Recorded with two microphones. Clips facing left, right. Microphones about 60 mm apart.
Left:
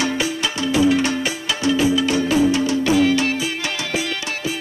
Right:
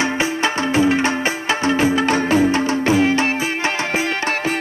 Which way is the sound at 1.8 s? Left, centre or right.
Right.